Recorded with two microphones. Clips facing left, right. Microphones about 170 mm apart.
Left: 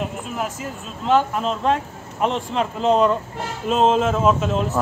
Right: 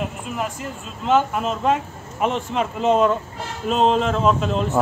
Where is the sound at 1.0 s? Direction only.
Centre (ahead or behind).